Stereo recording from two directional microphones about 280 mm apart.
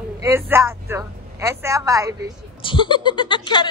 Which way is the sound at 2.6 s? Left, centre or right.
Centre.